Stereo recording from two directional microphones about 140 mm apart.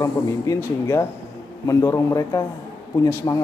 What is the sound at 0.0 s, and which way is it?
Speech, 20° left (ahead or behind).